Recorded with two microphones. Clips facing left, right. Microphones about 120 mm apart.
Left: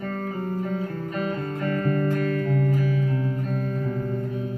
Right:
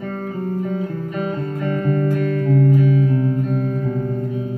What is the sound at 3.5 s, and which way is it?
Music, 45° right (ahead or behind).